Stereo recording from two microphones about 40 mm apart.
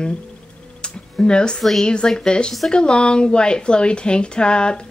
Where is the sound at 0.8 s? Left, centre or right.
Left.